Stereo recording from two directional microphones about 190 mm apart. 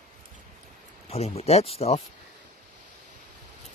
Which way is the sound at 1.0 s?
35° left (ahead or behind).